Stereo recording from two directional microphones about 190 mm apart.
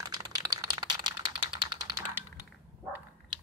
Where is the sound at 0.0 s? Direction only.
20° right (ahead or behind).